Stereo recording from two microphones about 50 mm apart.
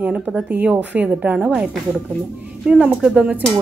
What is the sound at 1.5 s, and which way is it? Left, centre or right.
A woman's voice, centre.